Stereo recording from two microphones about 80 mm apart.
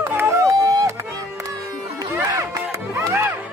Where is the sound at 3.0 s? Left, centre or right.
Right.